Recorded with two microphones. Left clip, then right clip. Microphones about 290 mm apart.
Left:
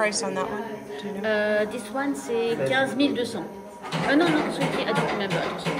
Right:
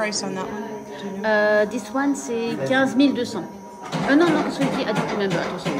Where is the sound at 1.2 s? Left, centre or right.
Right.